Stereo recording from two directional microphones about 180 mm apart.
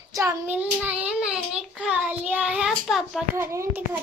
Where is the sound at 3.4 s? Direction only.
15° right (ahead or behind).